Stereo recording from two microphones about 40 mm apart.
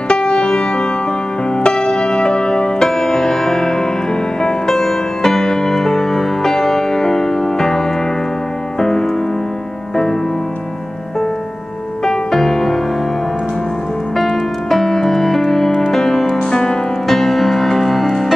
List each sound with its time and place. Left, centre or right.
0.1 s music: left
12.0 s music: centre
14.1 s music: centre
16.3 s music: centre
17.1 s music: centre